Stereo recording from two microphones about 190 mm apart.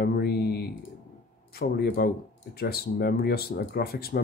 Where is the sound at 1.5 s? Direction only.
55° left (ahead or behind).